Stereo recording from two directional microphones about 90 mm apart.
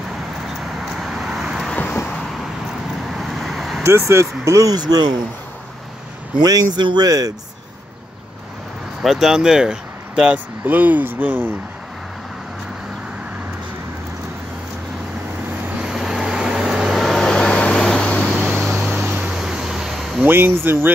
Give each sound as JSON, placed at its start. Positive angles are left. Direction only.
{"t": 0.6, "sound": "vehicle", "side_deg": -5}
{"t": 1.7, "sound": "vehicle", "side_deg": 15}
{"t": 3.1, "sound": "vehicle", "side_deg": 0}
{"t": 3.8, "sound": "speech", "side_deg": -30}
{"t": 4.7, "sound": "a man's voice", "side_deg": -50}
{"t": 6.4, "sound": "a man's voice", "side_deg": -50}
{"t": 9.0, "sound": "speech", "side_deg": 0}
{"t": 15.8, "sound": "vehicle", "side_deg": -5}
{"t": 18.5, "sound": "vehicle", "side_deg": -20}
{"t": 18.8, "sound": "a sound", "side_deg": -10}
{"t": 20.2, "sound": "speech", "side_deg": -25}